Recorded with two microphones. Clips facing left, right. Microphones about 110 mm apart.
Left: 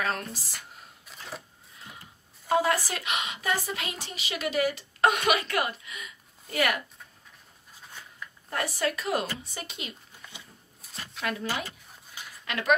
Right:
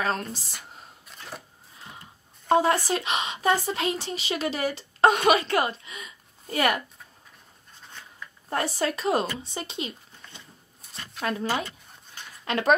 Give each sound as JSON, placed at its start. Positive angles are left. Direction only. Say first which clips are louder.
{"t": 0.0, "sound": "a woman's voice", "louder": "right 3 dB", "side_deg": -30}
{"t": 1.0, "sound": "camera", "louder": "even", "side_deg": 0}
{"t": 2.5, "sound": "a woman's voice", "louder": "right 4 dB", "side_deg": -25}
{"t": 8.5, "sound": "a woman's voice", "louder": "right 3 dB", "side_deg": -30}
{"t": 10.3, "sound": "a sound", "louder": "even", "side_deg": 0}
{"t": 12.4, "sound": "speech", "louder": "right 4 dB", "side_deg": -35}